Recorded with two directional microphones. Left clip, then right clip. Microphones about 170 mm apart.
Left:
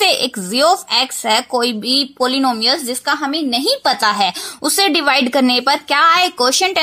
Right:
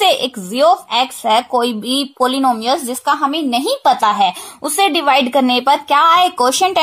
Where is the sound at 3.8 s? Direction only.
15° left (ahead or behind).